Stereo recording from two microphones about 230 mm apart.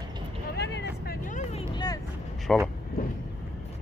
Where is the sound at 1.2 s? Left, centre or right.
Left.